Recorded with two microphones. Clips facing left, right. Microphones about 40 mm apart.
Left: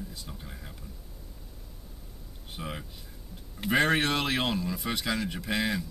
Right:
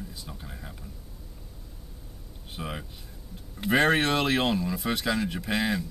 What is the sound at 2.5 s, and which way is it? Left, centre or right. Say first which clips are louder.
Speech: right 2 dB; centre.